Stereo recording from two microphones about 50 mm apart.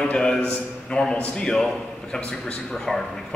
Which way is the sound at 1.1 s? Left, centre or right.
Centre.